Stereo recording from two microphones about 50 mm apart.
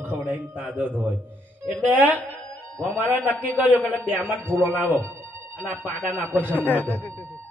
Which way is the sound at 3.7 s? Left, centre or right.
Left.